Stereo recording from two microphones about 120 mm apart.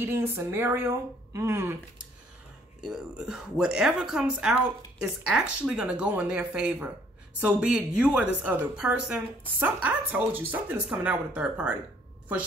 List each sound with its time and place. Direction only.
0.0 s speech: 20° right (ahead or behind)
2.8 s a woman's voice: 5° right (ahead or behind)